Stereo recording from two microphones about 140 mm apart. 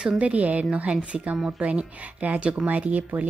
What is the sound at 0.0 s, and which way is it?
A woman's voice, 5° right (ahead or behind).